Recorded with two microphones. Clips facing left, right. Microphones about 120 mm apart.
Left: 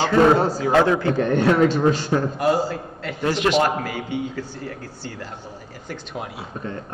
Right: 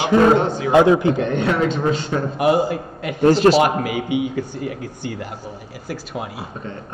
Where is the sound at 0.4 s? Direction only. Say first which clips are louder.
Right 1 dB; 35° left (ahead or behind).